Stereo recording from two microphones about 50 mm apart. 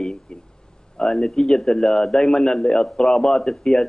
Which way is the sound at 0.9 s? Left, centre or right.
Centre.